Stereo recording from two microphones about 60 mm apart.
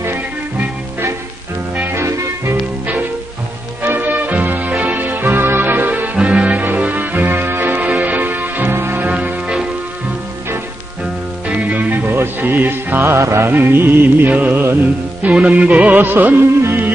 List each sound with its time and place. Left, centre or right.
2.0 s music: right
3.8 s music: right
6.1 s music: centre
8.7 s music: right
9.0 s music: right
11.4 s music: right
12.1 s music: right
13.1 s music: right
13.5 s music: right
15.3 s music: right